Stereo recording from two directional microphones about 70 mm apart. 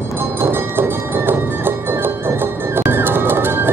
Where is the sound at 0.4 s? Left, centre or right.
Right.